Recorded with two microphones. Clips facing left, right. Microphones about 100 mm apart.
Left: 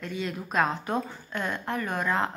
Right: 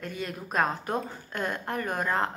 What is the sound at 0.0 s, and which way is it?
A woman's voice, 45° right (ahead or behind).